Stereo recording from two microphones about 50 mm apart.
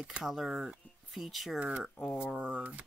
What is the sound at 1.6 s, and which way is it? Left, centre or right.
Speech, right.